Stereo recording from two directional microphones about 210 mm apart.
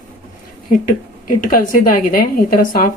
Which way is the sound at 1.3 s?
40° left (ahead or behind).